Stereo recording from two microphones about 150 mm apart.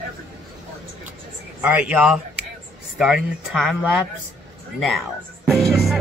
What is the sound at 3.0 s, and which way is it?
Music, centre (ahead or behind).